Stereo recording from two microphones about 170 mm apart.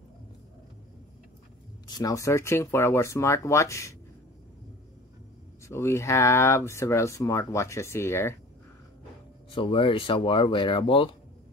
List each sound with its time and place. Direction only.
1.9 s speech: 20° left (ahead or behind)
5.7 s speech: 15° left (ahead or behind)
9.5 s speech: 30° left (ahead or behind)